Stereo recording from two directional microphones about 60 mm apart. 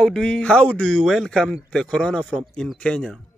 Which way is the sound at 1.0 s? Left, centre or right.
Centre.